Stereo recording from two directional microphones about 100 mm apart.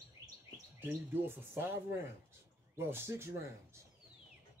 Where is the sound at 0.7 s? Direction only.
20° right (ahead or behind).